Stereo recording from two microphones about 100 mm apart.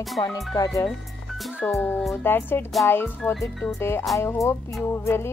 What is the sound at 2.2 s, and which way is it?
Music, 20° left (ahead or behind).